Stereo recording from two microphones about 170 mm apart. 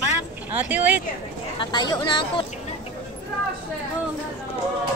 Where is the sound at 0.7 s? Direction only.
10° right (ahead or behind).